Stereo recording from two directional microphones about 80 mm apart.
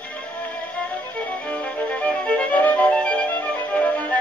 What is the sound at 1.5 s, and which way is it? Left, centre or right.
Music, centre.